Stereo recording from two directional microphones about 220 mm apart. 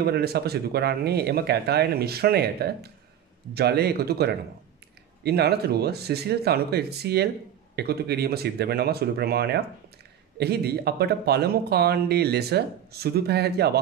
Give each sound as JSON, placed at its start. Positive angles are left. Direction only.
{"t": 0.0, "sound": "speech", "side_deg": -45}